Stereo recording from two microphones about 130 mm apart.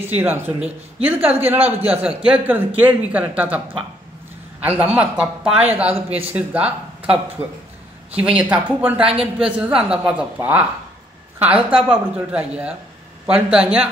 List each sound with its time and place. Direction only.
0.0 s a man's voice: 15° right (ahead or behind)
4.6 s a man's voice: 10° right (ahead or behind)